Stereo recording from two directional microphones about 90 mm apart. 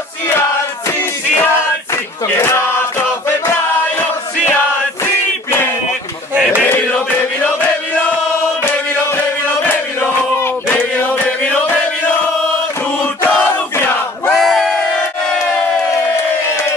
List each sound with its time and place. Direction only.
0.8 s music: 20° left (ahead or behind)
2.3 s male singing: 30° left (ahead or behind)
3.4 s music: 20° left (ahead or behind)
5.0 s a sound: 25° left (ahead or behind)
6.3 s a sound: 15° right (ahead or behind)
6.6 s chant: 15° left (ahead or behind)
7.2 s chant: 25° left (ahead or behind)
10.4 s a sound: 25° left (ahead or behind)
11.6 s chant: 20° left (ahead or behind)
13.0 s battle cry: 10° left (ahead or behind)
13.5 s battle cry: 20° left (ahead or behind)
14.3 s battle cry: centre (ahead or behind)